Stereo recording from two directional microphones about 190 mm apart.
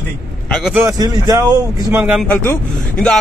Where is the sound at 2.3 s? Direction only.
10° left (ahead or behind).